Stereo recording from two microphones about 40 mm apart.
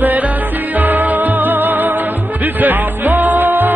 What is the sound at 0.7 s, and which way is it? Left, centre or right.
Music, right.